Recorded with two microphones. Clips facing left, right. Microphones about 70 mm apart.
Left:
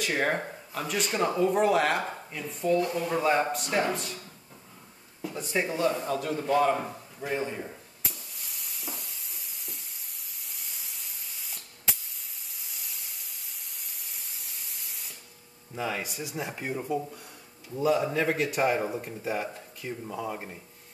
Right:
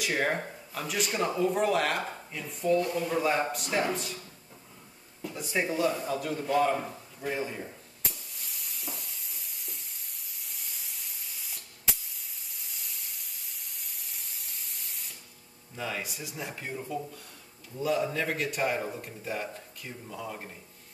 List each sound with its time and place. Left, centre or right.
0.1 s speech: centre
0.8 s a man's voice: centre
5.2 s a man's voice: centre
8.1 s spray: centre
12.5 s steam: centre
15.8 s a man's voice: centre
16.5 s speech: centre
17.7 s a man's voice: centre